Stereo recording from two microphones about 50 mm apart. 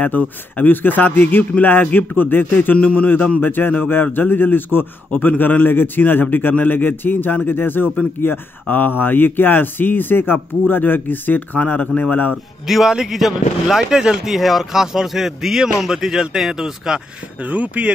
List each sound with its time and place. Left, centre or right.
0.0 s speech: left
12.6 s a man's voice: centre
17.4 s speech: right